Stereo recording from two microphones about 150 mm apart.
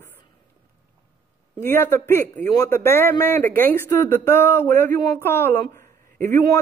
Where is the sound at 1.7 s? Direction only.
15° left (ahead or behind).